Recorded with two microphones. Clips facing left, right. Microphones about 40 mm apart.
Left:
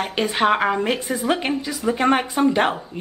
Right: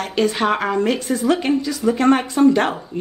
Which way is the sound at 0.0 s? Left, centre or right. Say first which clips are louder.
Right 1 dB; centre.